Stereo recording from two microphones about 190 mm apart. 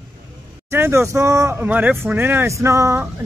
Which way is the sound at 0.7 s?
15° right (ahead or behind).